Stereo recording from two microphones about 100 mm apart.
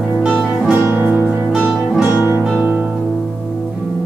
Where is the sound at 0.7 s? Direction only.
20° right (ahead or behind).